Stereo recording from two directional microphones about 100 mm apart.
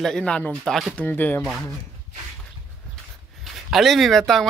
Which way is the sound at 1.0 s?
20° left (ahead or behind).